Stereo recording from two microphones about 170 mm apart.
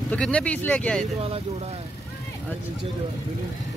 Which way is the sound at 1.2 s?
35° right (ahead or behind).